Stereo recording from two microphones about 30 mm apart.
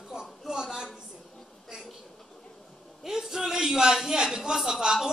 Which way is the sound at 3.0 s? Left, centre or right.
Centre.